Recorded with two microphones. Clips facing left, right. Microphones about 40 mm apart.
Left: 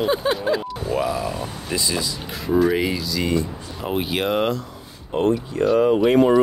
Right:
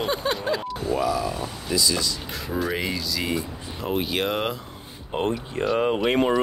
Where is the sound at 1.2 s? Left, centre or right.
Left.